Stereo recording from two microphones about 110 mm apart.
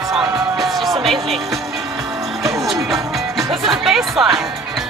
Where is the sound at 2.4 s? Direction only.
Centre (ahead or behind).